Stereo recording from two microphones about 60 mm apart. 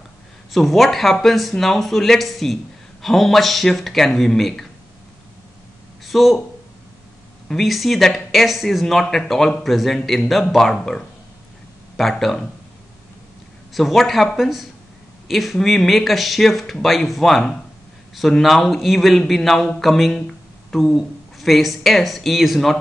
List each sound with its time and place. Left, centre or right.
0.5 s speech: centre
6.0 s speech: centre
7.4 s speech: centre
13.7 s speech: centre